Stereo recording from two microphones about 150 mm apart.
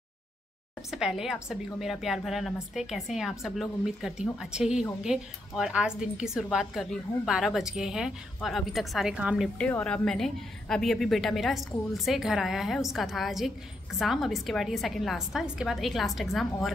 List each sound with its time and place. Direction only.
0.8 s a woman's voice: 5° right (ahead or behind)
9.6 s a woman's voice: 10° left (ahead or behind)